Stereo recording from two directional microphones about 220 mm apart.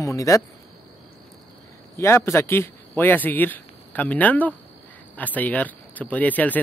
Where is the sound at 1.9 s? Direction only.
10° left (ahead or behind).